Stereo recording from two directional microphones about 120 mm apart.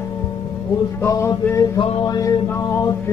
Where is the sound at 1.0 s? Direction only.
25° left (ahead or behind).